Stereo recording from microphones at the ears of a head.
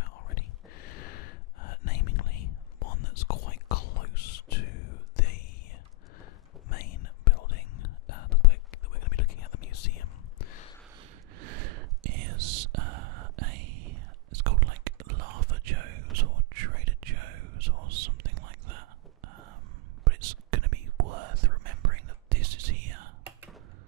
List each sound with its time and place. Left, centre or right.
0.0 s whispering: left
6.7 s whispering: left
11.0 s whispering: right